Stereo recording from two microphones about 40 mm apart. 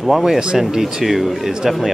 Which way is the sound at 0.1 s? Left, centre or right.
Centre.